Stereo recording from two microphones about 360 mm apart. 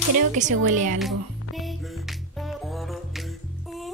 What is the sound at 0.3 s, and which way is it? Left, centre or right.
Music, right.